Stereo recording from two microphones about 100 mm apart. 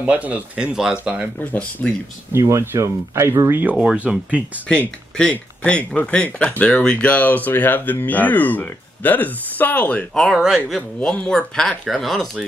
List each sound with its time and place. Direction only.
0.0 s speech: 15° right (ahead or behind)
1.4 s speech: 15° left (ahead or behind)
2.3 s speech: 25° right (ahead or behind)
3.7 s speech: 10° right (ahead or behind)
4.6 s speech: 10° left (ahead or behind)
10.1 s speech: 5° left (ahead or behind)
11.0 s speech: 10° left (ahead or behind)